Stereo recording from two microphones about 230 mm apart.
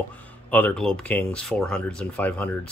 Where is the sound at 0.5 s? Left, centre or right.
Centre.